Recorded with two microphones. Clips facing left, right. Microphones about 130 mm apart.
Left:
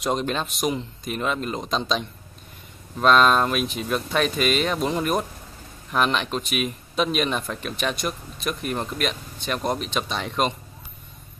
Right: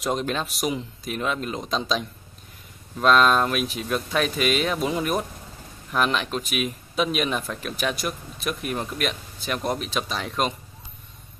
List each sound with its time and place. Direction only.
0.0 s speech: centre (ahead or behind)